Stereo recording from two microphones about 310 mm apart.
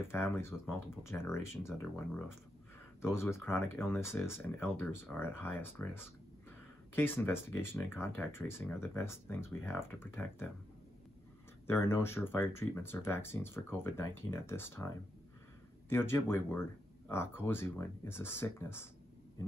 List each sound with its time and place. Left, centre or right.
0.0 s speech: centre
11.6 s speech: centre
15.9 s speech: centre